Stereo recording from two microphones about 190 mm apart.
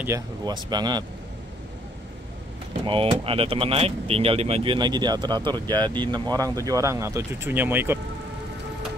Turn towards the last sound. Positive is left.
turn(degrees=-10)  # may be behind; listen again after turning